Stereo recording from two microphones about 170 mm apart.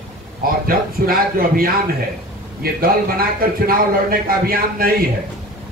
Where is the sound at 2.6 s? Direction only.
60° right (ahead or behind).